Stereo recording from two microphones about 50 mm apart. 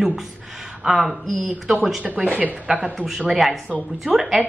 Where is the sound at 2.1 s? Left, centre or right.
Right.